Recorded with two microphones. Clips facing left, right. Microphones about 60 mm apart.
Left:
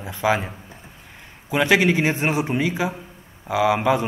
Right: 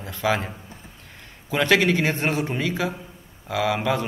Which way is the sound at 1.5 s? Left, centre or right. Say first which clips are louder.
Left 2 dB; centre.